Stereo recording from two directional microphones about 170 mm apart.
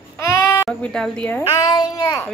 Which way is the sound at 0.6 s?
5° left (ahead or behind).